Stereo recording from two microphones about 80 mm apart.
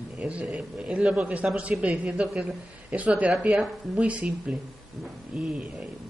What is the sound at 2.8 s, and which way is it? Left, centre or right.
Speech, centre.